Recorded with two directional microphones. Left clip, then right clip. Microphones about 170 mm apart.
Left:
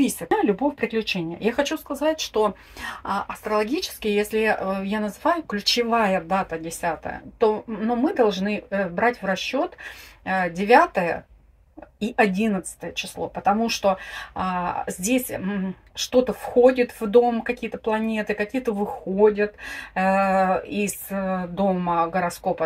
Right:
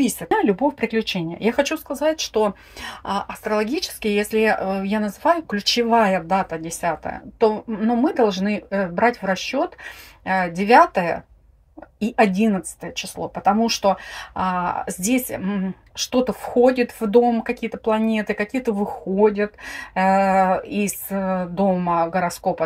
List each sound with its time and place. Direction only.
0.0 s speech: 35° right (ahead or behind)